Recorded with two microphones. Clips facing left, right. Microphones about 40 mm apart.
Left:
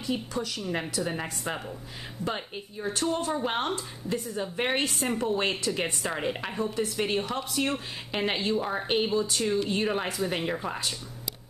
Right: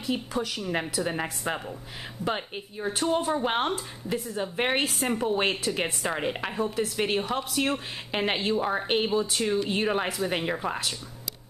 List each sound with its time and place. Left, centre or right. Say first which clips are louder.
0.0 s a woman's voice: right 2 dB; centre